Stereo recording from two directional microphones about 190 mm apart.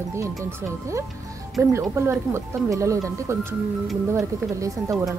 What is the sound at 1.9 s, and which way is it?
Speech, 15° right (ahead or behind).